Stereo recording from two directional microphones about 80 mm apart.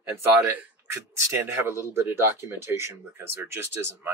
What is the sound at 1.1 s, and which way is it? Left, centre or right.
Speech, right.